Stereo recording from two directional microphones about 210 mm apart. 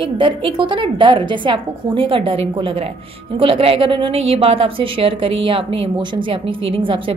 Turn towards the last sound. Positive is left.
turn(degrees=-25)  # may be behind; listen again after turning